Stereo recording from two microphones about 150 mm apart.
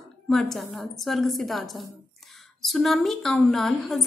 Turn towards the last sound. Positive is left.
turn(degrees=5)  # may be behind; listen again after turning